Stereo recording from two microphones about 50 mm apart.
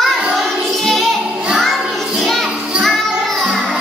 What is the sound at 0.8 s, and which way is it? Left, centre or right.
Music, centre.